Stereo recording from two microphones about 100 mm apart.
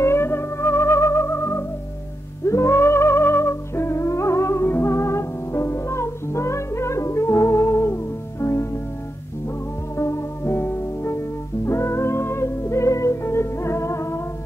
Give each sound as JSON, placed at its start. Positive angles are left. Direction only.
{"t": 0.0, "sound": "theremin", "side_deg": 25}
{"t": 2.4, "sound": "music", "side_deg": 30}
{"t": 9.9, "sound": "music", "side_deg": 30}